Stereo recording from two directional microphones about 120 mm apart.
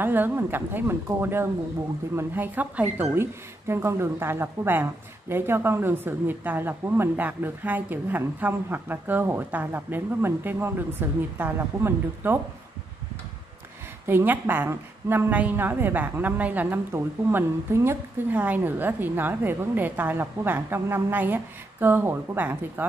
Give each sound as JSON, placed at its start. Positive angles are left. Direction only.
{"t": 0.0, "sound": "a woman's voice", "side_deg": -15}
{"t": 14.0, "sound": "a woman's voice", "side_deg": -15}